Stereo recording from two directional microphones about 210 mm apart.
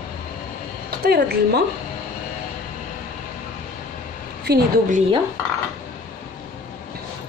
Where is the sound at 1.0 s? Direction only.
50° right (ahead or behind).